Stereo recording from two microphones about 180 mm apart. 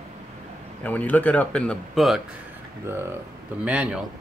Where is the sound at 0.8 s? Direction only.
10° left (ahead or behind).